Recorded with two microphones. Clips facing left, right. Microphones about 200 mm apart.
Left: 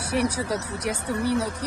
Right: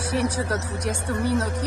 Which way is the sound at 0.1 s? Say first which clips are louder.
Even; 10° left (ahead or behind).